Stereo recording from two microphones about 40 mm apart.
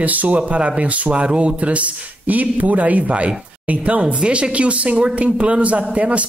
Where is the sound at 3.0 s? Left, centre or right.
Right.